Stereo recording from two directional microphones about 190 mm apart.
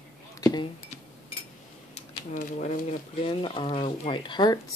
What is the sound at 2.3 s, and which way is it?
Speech, 40° left (ahead or behind).